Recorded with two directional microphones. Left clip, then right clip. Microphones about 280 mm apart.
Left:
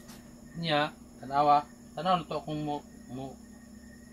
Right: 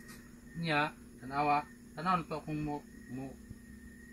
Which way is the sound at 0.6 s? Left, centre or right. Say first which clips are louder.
Left 4 dB; left.